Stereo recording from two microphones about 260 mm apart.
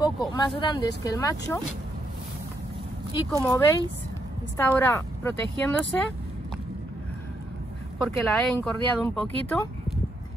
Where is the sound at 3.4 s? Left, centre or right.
Centre.